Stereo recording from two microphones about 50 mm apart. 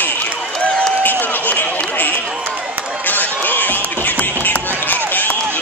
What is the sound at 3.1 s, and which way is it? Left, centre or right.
Music, left.